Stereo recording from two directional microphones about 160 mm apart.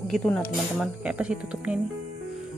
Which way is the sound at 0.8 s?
5° right (ahead or behind).